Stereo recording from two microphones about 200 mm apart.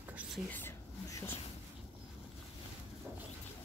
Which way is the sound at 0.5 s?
10° left (ahead or behind).